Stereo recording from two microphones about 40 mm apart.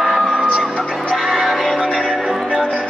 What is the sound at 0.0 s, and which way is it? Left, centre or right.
Music, centre.